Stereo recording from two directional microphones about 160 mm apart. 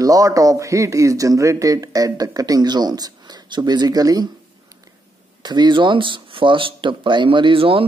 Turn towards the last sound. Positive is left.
turn(degrees=-35)  # may be behind; listen again after turning